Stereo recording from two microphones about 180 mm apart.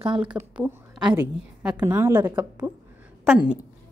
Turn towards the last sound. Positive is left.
turn(degrees=-10)  # may be behind; listen again after turning